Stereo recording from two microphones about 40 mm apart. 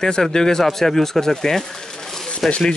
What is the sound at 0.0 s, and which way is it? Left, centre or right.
Speech, centre.